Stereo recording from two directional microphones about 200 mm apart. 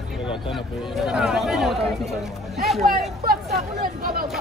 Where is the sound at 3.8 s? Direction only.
45° right (ahead or behind).